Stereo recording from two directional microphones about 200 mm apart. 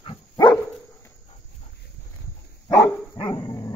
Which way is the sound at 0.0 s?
25° left (ahead or behind).